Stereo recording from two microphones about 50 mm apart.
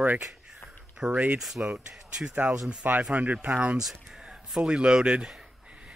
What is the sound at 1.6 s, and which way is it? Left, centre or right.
Speech, right.